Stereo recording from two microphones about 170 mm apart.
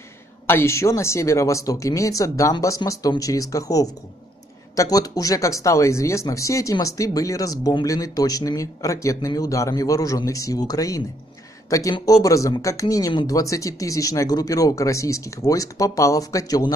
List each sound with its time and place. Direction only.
0.5 s speech: 15° left (ahead or behind)